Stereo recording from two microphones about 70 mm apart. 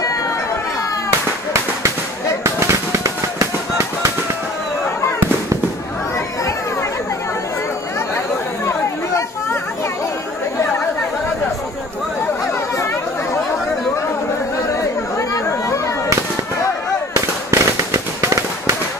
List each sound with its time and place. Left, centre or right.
2.4 s fireworks: right
8.6 s chatter: left
17.1 s fireworks: right